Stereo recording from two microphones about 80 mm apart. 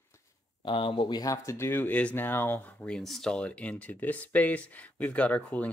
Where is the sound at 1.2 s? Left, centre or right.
Left.